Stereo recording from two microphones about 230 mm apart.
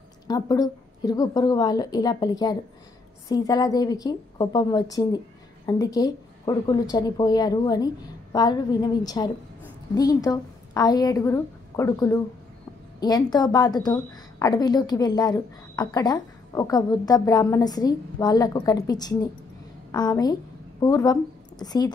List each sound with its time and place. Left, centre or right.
0.3 s a woman's voice: centre